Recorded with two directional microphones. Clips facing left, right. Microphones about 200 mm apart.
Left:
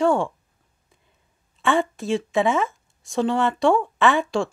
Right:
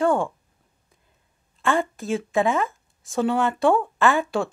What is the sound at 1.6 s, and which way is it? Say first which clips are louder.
A woman's voice: left 2 dB; centre (ahead or behind).